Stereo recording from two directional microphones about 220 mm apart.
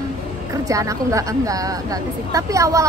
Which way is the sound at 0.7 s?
15° right (ahead or behind).